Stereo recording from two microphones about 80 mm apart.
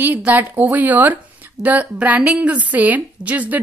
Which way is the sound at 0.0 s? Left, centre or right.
Right.